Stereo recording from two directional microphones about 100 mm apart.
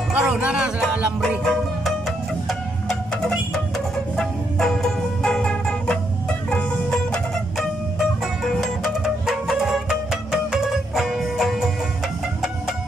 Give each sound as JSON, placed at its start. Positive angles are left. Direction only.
{"t": 0.1, "sound": "speech", "side_deg": -10}
{"t": 1.4, "sound": "music", "side_deg": 5}